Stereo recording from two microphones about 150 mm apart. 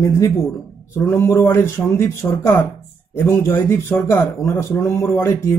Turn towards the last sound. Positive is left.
turn(degrees=20)  # may be behind; listen again after turning